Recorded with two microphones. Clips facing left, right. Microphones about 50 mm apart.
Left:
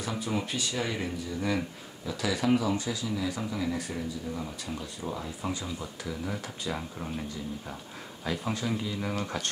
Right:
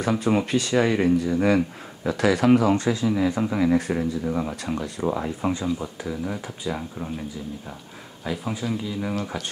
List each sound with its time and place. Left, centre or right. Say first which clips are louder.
0.0 s speech: right 10 dB; right
3.4 s speech: right 11 dB; right
5.8 s speech: right 6 dB; centre